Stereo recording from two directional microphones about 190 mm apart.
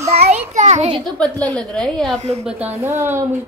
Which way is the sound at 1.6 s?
5° left (ahead or behind).